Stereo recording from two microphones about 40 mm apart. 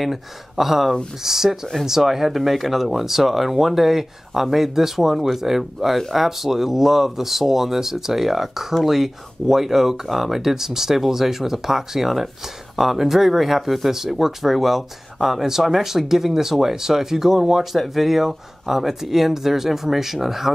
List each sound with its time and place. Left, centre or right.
0.0 s speech: centre